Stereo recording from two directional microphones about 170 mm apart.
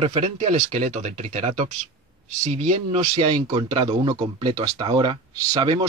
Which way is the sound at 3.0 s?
25° right (ahead or behind).